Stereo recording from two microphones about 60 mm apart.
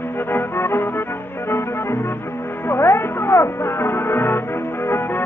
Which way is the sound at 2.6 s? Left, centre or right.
Left.